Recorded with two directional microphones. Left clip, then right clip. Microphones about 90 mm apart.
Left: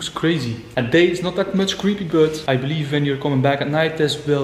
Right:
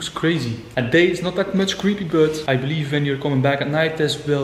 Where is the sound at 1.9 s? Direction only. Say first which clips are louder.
Left 1 dB; 20° left (ahead or behind).